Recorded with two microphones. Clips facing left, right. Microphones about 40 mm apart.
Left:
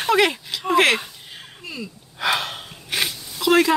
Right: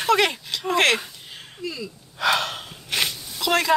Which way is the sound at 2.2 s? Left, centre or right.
Centre.